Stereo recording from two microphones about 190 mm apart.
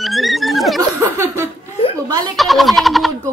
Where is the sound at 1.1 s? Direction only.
15° right (ahead or behind).